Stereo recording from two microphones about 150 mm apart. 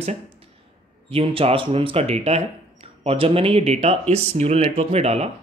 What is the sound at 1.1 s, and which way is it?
Speech, 40° right (ahead or behind).